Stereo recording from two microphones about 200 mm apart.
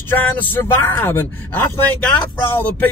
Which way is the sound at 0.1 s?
10° left (ahead or behind).